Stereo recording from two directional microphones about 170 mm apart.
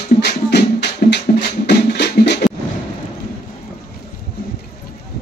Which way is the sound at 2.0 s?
90° left.